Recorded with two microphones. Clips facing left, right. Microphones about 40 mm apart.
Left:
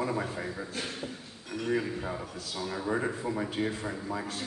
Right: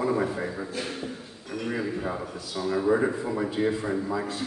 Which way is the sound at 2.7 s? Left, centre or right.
Right.